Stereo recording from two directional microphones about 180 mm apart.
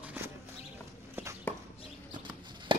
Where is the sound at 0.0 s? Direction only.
10° right (ahead or behind).